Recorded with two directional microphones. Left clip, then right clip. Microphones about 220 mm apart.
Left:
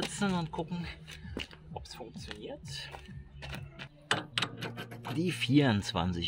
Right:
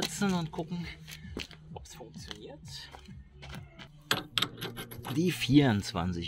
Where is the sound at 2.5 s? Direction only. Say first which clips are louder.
Left 3 dB; 10° left (ahead or behind).